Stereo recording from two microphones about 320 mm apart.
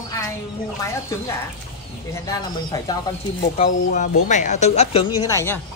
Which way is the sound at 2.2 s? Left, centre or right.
Centre.